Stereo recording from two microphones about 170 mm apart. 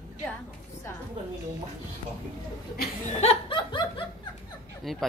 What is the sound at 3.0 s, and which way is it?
Snicker, 40° left (ahead or behind).